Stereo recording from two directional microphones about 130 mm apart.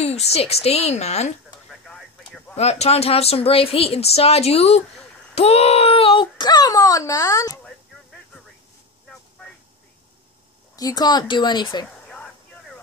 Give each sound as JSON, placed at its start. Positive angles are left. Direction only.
{"t": 0.0, "sound": "a woman's voice", "side_deg": 55}
{"t": 1.7, "sound": "a sound", "side_deg": 5}
{"t": 2.5, "sound": "speech", "side_deg": 55}
{"t": 10.8, "sound": "speech", "side_deg": 30}